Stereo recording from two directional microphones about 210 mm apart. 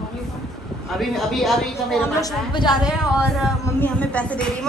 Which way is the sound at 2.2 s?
20° left (ahead or behind).